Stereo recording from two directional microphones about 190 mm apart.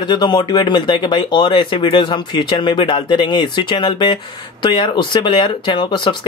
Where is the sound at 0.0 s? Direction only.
25° left (ahead or behind).